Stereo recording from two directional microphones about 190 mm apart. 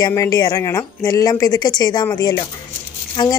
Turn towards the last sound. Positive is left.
turn(degrees=25)  # may be behind; listen again after turning